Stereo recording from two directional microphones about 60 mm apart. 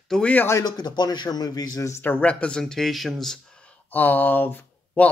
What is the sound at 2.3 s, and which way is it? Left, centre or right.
Speech, centre.